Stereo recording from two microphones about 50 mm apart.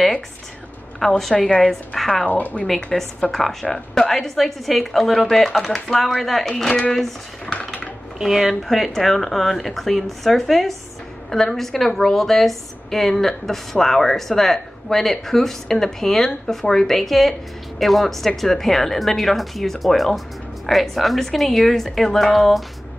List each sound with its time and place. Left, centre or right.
0.9 s a woman's voice: centre
2.2 s a woman's voice: left
2.6 s a woman's voice: centre
8.2 s a woman's voice: centre